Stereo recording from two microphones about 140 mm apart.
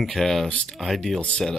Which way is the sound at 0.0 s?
Centre (ahead or behind).